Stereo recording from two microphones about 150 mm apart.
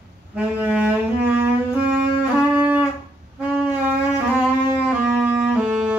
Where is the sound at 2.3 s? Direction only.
15° right (ahead or behind).